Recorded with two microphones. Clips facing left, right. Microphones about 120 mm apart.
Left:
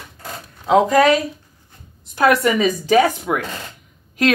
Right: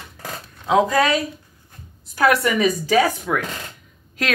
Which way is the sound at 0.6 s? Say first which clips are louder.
Left 4 dB; 25° left (ahead or behind).